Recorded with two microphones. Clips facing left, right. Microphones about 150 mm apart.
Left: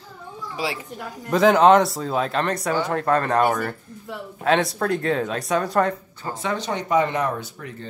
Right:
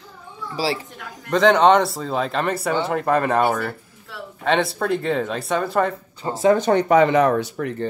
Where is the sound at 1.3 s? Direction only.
5° left (ahead or behind).